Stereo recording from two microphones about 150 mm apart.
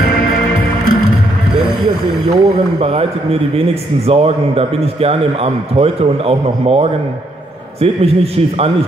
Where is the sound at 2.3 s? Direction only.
45° right (ahead or behind).